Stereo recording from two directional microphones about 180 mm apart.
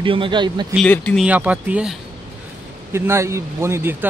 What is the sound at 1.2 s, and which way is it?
Speech, 10° right (ahead or behind).